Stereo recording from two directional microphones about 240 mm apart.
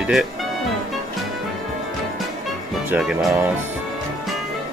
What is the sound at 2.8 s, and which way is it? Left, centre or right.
Speech, centre.